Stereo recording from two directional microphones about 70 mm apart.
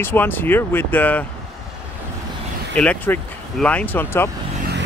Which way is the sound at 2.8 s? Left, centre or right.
Centre.